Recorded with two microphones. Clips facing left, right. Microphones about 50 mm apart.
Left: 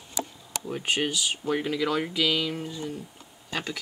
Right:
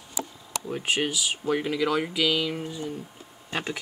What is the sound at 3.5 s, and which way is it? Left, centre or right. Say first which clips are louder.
Speech: right 2 dB; right.